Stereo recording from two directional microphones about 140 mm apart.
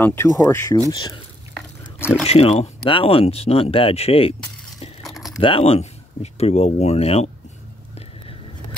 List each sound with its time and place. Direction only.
0.0 s speech: 15° left (ahead or behind)
0.9 s speech: 35° left (ahead or behind)
2.2 s speech: 45° left (ahead or behind)
5.0 s a sound: centre (ahead or behind)
5.4 s speech: 40° left (ahead or behind)